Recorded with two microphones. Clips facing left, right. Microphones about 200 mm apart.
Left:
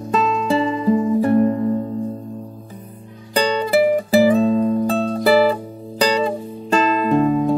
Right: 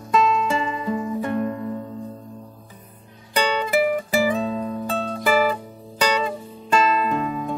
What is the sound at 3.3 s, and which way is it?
Music, 35° left (ahead or behind).